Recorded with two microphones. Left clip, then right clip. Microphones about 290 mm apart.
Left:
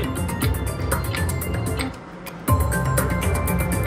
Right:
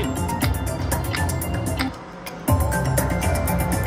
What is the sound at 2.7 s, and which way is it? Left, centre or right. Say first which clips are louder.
Music: even; centre.